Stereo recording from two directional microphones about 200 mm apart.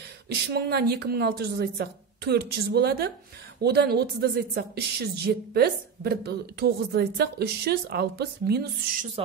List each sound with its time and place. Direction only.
0.3 s a woman's voice: 55° right (ahead or behind)